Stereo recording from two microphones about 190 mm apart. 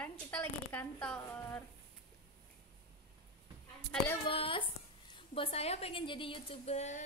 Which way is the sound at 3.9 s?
5° left (ahead or behind).